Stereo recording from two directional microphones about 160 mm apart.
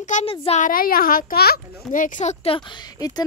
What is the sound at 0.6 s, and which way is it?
A child's voice, 65° left (ahead or behind).